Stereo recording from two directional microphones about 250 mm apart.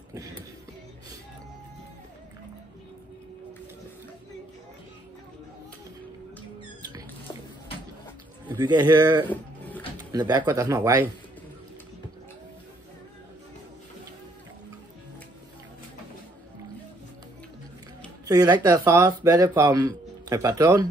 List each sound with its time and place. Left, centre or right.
0.1 s music: centre
6.8 s rodents: centre
8.5 s speech: centre
18.2 s speech: centre